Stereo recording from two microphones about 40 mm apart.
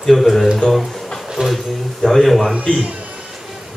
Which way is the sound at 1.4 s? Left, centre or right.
Right.